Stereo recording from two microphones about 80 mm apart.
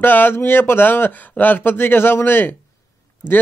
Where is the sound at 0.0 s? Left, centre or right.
Left.